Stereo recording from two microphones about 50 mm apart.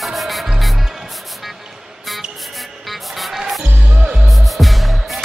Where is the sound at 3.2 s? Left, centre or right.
Centre.